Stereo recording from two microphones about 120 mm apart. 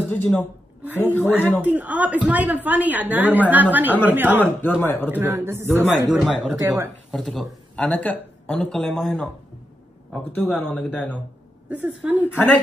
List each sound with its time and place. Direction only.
0.1 s speech: 10° left (ahead or behind)
0.8 s a woman's voice: 15° right (ahead or behind)
4.4 s speech: 15° left (ahead or behind)
5.1 s a man's voice: 20° right (ahead or behind)
6.0 s speech: 5° right (ahead or behind)
6.6 s a man's voice: 30° right (ahead or behind)
7.1 s speech: centre (ahead or behind)
10.5 s speech: 10° left (ahead or behind)
11.7 s a woman's voice: 15° right (ahead or behind)
12.3 s speech: 15° left (ahead or behind)